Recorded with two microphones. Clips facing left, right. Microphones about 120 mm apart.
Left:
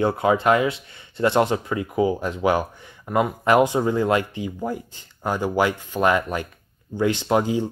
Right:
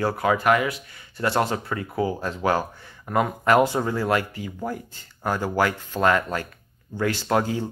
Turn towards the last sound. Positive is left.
turn(degrees=15)  # may be behind; listen again after turning